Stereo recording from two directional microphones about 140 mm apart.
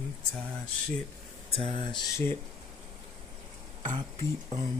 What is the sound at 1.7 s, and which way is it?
Speech, 35° left (ahead or behind).